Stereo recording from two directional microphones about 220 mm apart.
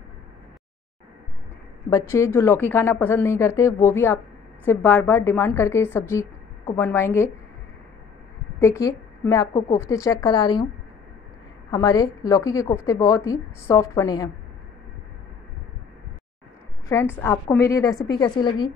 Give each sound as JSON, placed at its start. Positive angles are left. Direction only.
{"t": 1.9, "sound": "a woman's voice", "side_deg": 15}
{"t": 8.5, "sound": "a woman's voice", "side_deg": 15}
{"t": 11.7, "sound": "a woman's voice", "side_deg": 15}
{"t": 17.2, "sound": "a woman's voice", "side_deg": 10}